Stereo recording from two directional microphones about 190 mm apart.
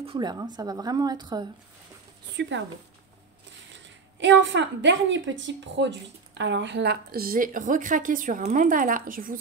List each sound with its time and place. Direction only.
0.0 s speech: 25° right (ahead or behind)
3.7 s a woman's voice: 70° right (ahead or behind); by 9.4 s 45° right (ahead or behind)